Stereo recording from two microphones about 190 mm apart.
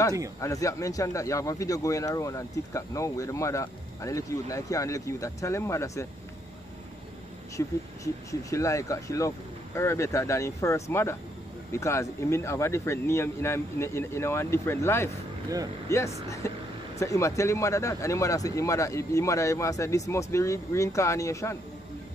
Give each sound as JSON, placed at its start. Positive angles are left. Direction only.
{"t": 0.4, "sound": "speech", "side_deg": 15}
{"t": 7.5, "sound": "speech", "side_deg": 15}
{"t": 16.4, "sound": "speech", "side_deg": 15}